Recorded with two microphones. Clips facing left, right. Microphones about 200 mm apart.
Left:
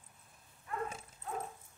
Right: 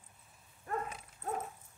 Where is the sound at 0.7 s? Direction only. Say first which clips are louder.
Right 3 dB; 45° right (ahead or behind).